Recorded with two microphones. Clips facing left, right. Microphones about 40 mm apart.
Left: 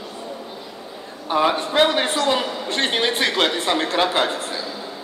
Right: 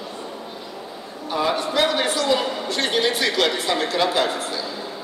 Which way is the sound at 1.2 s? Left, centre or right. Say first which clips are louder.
Left 3 dB; left.